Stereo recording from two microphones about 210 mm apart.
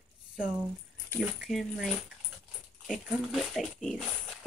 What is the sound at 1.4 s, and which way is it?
Speech, centre (ahead or behind).